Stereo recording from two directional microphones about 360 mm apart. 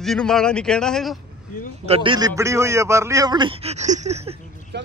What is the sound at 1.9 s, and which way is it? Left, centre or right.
A man's voice, centre.